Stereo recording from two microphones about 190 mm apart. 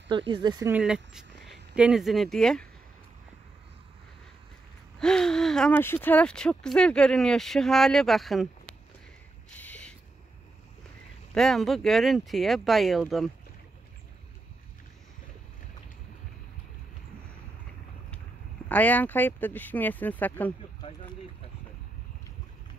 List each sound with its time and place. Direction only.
0.1 s speech: 25° right (ahead or behind)
0.7 s speech: 5° right (ahead or behind)
4.9 s speech: 5° left (ahead or behind)
9.5 s a sound: 5° left (ahead or behind)
11.3 s speech: centre (ahead or behind)
18.7 s speech: 10° left (ahead or behind)
20.8 s speech: 30° left (ahead or behind)